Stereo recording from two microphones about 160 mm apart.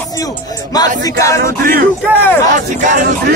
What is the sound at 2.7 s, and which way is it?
Speech, 50° right (ahead or behind).